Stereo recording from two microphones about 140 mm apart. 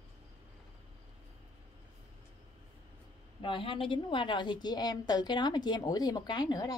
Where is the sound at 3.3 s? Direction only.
40° left (ahead or behind).